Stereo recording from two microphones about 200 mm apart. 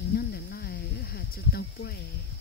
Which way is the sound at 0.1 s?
50° left (ahead or behind).